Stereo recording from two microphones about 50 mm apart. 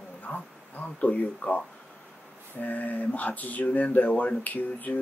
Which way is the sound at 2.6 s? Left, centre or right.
Left.